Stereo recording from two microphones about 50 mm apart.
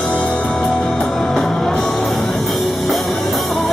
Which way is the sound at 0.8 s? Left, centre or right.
Centre.